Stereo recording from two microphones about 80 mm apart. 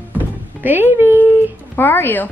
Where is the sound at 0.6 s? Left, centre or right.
Right.